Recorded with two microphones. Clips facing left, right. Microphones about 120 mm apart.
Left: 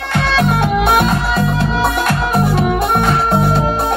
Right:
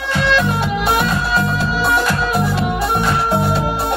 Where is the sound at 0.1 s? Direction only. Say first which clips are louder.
Left 1 dB; 60° left (ahead or behind).